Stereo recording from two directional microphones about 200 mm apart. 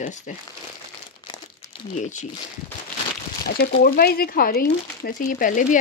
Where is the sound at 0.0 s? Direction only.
40° left (ahead or behind).